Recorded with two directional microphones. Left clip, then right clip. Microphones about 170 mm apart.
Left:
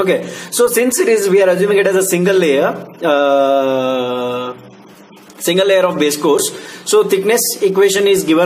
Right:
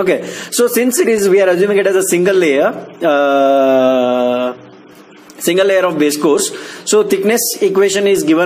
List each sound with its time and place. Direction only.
0.0 s a man's voice: 35° right (ahead or behind)